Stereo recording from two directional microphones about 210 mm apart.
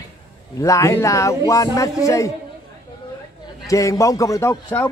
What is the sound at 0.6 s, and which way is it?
A man's voice, 15° left (ahead or behind).